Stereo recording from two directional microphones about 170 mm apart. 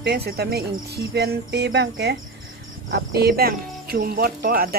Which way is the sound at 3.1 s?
65° right (ahead or behind).